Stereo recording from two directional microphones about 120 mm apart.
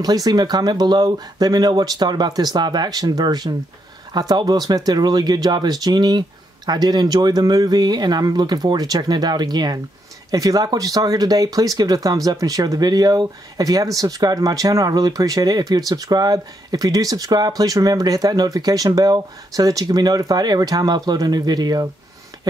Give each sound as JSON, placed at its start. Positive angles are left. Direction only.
{"t": 0.0, "sound": "speech", "side_deg": -35}